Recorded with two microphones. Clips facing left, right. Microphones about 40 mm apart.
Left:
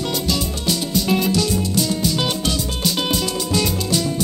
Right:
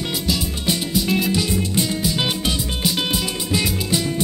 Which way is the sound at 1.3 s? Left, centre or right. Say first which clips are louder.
Left 1 dB; right.